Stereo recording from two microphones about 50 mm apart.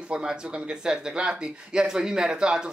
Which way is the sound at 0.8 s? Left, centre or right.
Centre.